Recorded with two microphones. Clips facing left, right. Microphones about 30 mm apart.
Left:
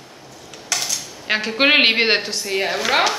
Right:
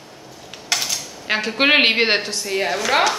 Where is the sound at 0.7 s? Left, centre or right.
Right.